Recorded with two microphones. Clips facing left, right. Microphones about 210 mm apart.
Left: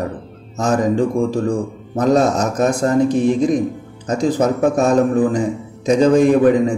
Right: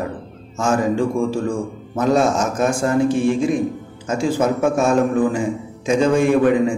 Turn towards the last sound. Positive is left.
turn(degrees=40)  # may be behind; listen again after turning